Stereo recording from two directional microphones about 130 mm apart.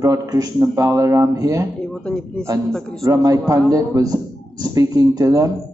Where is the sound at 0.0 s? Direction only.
30° right (ahead or behind).